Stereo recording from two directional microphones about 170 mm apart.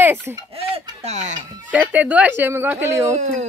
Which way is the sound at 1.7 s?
10° right (ahead or behind).